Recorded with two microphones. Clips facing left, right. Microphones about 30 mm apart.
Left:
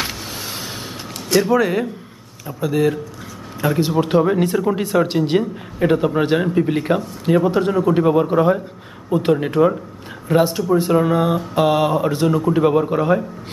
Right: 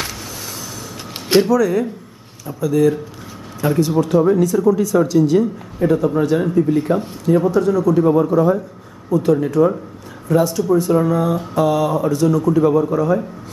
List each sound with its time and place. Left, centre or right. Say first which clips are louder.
1.5 s speech: right 1 dB; left
2.4 s a man's voice: right 3 dB; left
4.0 s a man's voice: right 1 dB; left